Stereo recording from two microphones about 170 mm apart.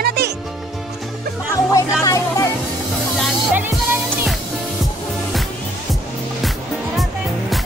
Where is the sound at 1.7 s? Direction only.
20° left (ahead or behind).